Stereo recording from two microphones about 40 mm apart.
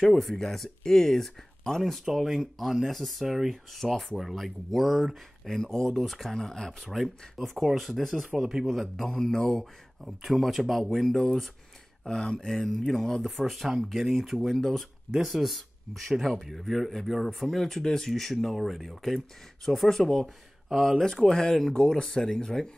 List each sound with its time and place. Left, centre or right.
0.1 s speech: centre
1.9 s speech: centre
8.5 s speech: centre
8.9 s speech: centre
9.6 s speech: centre
14.4 s speech: centre
15.1 s speech: centre
21.0 s speech: centre
21.7 s speech: left